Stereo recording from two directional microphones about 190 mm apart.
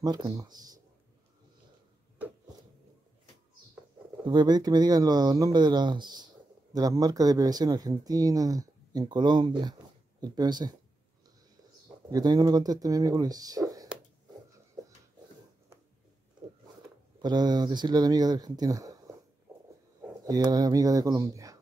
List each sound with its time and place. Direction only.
0.0 s speech: 20° right (ahead or behind)
4.2 s speech: 25° right (ahead or behind)
12.1 s speech: 20° right (ahead or behind)
17.2 s speech: 20° right (ahead or behind)
20.2 s speech: 20° right (ahead or behind)